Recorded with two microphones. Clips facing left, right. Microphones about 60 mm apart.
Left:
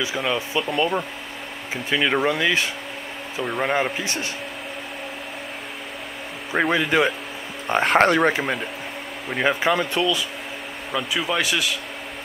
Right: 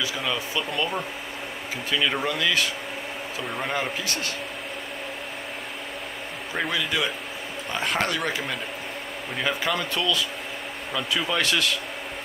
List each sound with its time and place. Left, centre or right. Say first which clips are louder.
0.0 s speech: left 4 dB; centre
6.5 s speech: left 7 dB; left; by 11.8 s centre